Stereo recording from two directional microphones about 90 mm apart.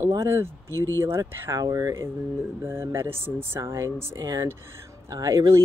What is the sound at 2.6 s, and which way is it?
Speech, 30° right (ahead or behind).